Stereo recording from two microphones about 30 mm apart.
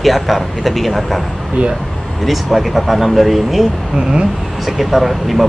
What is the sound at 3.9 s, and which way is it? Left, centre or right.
Speech, right.